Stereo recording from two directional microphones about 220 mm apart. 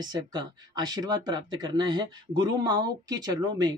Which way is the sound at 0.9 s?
20° right (ahead or behind).